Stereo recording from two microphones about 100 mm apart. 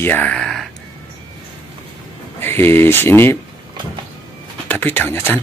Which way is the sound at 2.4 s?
20° left (ahead or behind).